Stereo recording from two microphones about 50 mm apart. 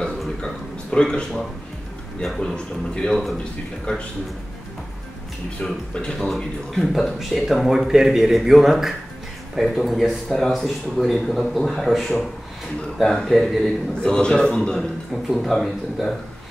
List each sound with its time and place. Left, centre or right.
0.4 s a sound: centre
2.2 s a man's voice: centre
2.5 s a man's voice: centre
5.6 s speech: centre
13.0 s a man's voice: centre
14.8 s speech: centre